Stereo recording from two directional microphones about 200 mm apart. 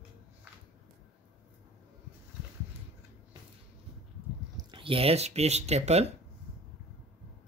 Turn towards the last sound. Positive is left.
turn(degrees=-35)  # may be behind; listen again after turning